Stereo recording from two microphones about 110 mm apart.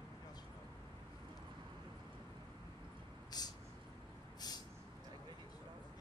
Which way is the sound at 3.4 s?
35° left (ahead or behind).